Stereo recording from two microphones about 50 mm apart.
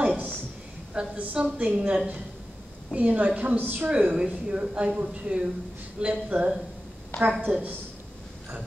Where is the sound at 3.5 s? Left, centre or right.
Right.